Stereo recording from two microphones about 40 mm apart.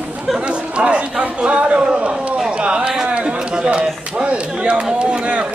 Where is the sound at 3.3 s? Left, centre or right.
Right.